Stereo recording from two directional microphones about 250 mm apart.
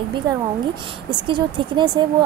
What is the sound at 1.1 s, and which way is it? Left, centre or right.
Speech, centre.